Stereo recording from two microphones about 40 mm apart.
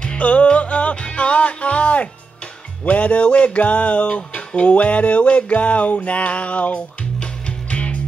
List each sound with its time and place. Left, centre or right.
0.2 s music: left